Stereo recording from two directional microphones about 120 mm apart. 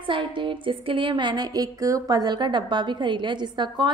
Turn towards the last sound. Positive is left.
turn(degrees=-40)  # may be behind; listen again after turning